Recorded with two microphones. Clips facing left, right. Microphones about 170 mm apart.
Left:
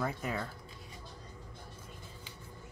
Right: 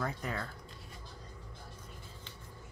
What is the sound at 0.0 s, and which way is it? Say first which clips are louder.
Speech: left 2 dB; 5° left (ahead or behind).